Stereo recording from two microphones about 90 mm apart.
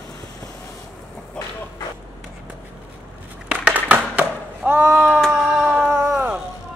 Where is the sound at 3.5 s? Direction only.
15° right (ahead or behind).